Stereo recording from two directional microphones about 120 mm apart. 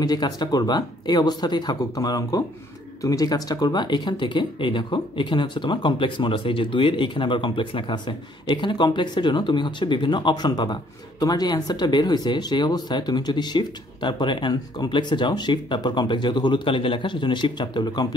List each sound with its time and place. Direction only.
0.0 s speech: 35° left (ahead or behind)